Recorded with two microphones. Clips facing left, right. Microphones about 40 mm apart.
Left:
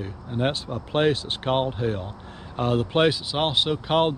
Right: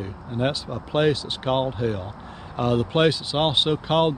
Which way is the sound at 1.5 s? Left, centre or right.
Centre.